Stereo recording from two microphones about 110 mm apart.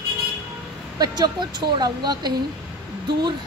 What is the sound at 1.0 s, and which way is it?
A woman's voice, 40° right (ahead or behind).